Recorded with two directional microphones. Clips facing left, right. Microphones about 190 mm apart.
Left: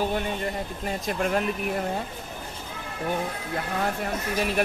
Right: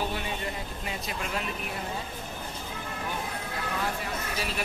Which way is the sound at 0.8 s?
50° left (ahead or behind).